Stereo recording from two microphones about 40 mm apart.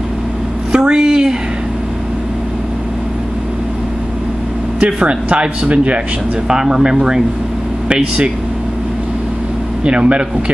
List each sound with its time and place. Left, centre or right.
0.7 s a sound: right
4.7 s speech: right
6.5 s speech: centre
9.8 s speech: right